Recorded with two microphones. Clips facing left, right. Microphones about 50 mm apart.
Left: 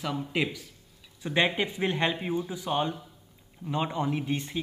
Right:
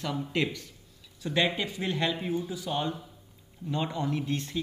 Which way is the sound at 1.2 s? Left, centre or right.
Left.